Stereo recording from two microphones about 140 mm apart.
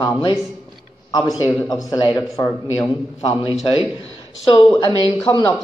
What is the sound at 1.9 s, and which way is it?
Speech, 30° left (ahead or behind).